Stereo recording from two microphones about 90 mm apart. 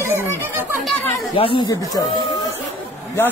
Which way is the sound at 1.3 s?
75° left (ahead or behind).